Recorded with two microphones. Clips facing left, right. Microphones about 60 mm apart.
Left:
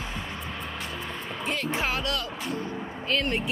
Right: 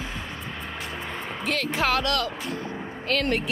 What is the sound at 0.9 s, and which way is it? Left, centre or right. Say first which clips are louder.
Music: right 2 dB; centre.